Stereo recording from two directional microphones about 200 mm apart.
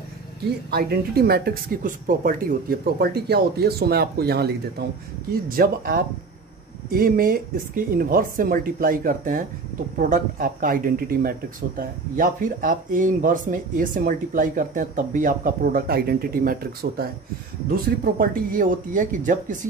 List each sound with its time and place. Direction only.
0.7 s speech: 50° right (ahead or behind)